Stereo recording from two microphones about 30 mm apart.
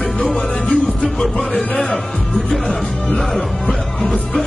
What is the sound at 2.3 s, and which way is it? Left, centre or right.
Music, centre.